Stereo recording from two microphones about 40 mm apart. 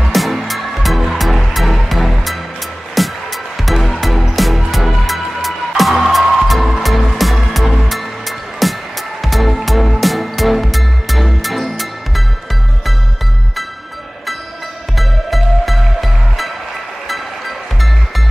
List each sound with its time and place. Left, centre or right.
0.0 s music: centre
15.0 s music: centre